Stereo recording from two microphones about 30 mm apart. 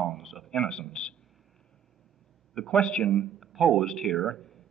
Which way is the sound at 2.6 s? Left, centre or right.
Left.